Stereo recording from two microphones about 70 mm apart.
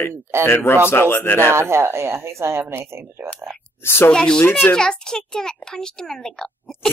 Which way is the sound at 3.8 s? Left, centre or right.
Left.